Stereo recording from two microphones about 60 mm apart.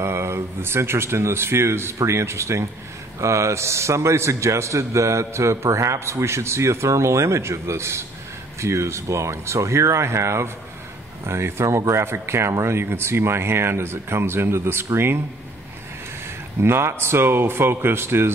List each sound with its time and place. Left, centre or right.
0.0 s a man's voice: right
16.6 s speech: right